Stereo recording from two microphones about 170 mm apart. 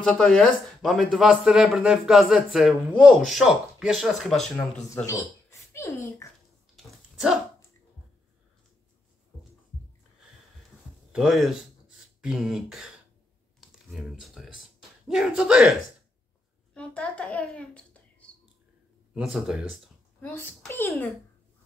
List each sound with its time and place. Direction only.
0.2 s speech: centre (ahead or behind)
5.0 s speech: 15° left (ahead or behind)
6.8 s a sound: 5° right (ahead or behind)
11.1 s speech: centre (ahead or behind)
13.6 s a sound: centre (ahead or behind)
16.7 s a child's voice: 5° left (ahead or behind)
18.3 s whispering: 5° left (ahead or behind)
19.1 s speech: 5° right (ahead or behind)
20.2 s a child's voice: 10° left (ahead or behind)